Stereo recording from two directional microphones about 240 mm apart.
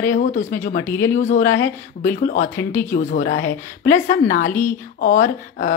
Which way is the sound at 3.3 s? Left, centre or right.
Left.